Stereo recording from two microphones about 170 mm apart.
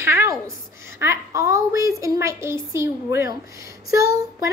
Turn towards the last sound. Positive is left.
turn(degrees=-20)  # may be behind; listen again after turning